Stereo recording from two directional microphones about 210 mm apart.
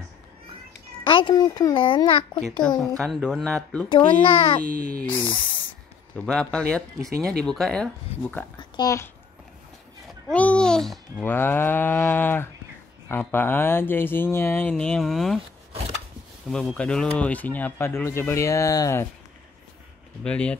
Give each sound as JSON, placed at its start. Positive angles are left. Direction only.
{"t": 1.0, "sound": "a child's voice", "side_deg": 25}
{"t": 2.3, "sound": "speech", "side_deg": 5}
{"t": 3.9, "sound": "a child's voice", "side_deg": 25}
{"t": 6.1, "sound": "speech", "side_deg": 5}
{"t": 8.5, "sound": "a child's voice", "side_deg": 20}
{"t": 10.3, "sound": "speech", "side_deg": 5}
{"t": 16.4, "sound": "speech", "side_deg": 5}
{"t": 20.2, "sound": "speech", "side_deg": 5}